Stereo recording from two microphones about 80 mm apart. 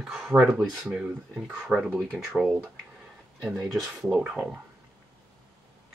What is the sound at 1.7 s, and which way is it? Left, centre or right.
Speech, right.